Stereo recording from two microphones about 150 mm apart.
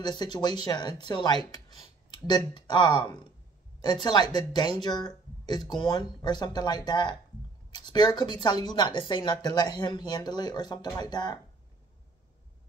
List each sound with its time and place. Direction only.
0.0 s speech: 30° left (ahead or behind)